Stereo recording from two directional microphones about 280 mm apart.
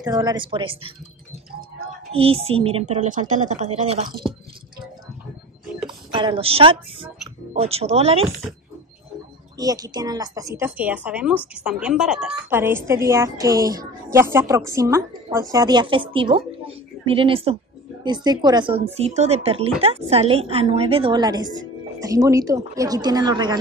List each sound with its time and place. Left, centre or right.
0.0 s a woman's voice: centre
2.1 s a woman's voice: right
5.9 s a woman's voice: centre
9.6 s a woman's voice: centre